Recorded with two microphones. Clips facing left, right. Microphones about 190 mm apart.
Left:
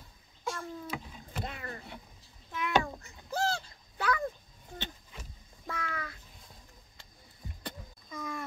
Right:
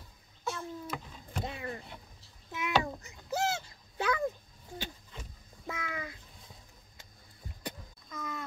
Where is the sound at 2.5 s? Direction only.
20° right (ahead or behind).